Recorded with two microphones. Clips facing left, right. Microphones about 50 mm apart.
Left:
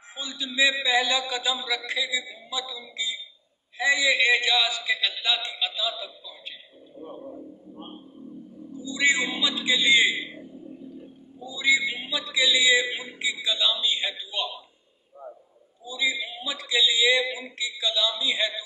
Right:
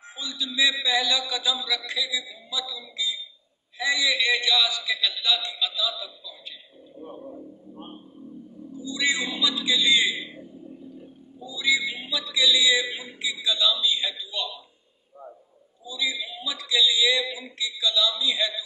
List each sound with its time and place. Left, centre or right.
0.3 s a man's voice: left
8.8 s a man's voice: left
11.4 s music: left
15.8 s a man's voice: left